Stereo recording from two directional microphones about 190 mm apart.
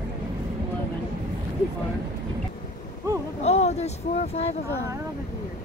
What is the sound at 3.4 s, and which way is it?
Speech, 35° left (ahead or behind).